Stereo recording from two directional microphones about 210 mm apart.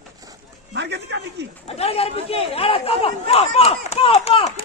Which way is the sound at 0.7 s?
55° right (ahead or behind).